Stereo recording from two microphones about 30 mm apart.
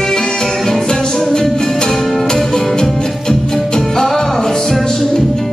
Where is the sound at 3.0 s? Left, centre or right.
Left.